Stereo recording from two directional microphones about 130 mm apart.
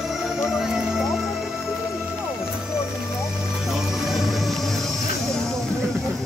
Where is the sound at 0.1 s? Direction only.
5° right (ahead or behind).